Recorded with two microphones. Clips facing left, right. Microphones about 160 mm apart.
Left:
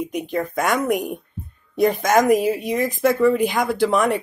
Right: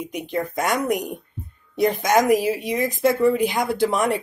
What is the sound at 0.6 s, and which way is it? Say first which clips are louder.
Speech: left 2 dB; 15° right (ahead or behind).